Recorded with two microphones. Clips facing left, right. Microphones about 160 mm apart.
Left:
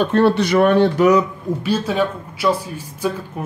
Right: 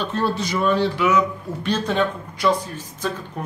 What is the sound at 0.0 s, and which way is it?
A man's voice, 65° left (ahead or behind).